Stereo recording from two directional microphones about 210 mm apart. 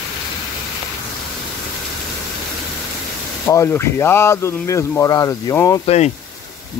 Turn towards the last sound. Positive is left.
turn(degrees=30)  # may be behind; listen again after turning